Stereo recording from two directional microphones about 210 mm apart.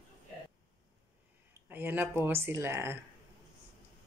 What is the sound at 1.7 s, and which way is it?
Speech, 10° right (ahead or behind).